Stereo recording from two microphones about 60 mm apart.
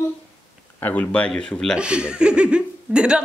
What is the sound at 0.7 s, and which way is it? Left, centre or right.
Speech, left.